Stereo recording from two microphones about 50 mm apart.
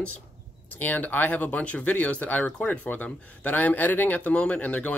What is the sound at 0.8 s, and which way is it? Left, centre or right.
Speech, left.